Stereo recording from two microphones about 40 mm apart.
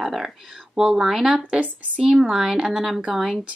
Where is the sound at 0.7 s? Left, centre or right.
Centre.